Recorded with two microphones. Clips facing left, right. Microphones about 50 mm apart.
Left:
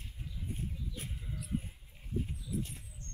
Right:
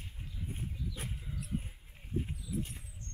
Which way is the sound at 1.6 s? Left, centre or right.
Right.